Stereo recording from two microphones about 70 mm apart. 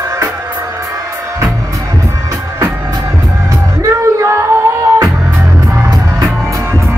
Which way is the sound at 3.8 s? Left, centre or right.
Right.